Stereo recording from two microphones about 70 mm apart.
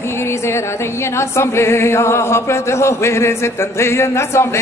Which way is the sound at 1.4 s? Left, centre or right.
Left.